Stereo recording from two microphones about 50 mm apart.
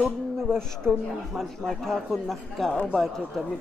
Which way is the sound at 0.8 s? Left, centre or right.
Right.